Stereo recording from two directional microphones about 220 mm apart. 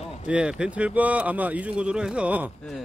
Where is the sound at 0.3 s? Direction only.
5° right (ahead or behind).